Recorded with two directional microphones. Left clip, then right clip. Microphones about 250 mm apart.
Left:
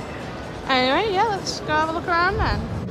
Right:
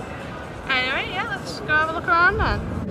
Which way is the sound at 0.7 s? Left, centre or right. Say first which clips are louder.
Left 3 dB; centre.